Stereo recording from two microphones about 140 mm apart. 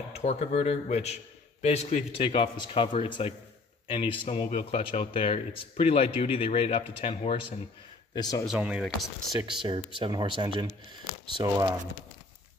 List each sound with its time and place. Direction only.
0.1 s speech: 50° left (ahead or behind)
2.2 s a man's voice: 35° left (ahead or behind)
4.5 s speech: 50° left (ahead or behind)
8.1 s a man's voice: 30° left (ahead or behind)
8.5 s speech: 5° right (ahead or behind)
9.5 s speech: 35° right (ahead or behind)
11.4 s speech: 25° right (ahead or behind)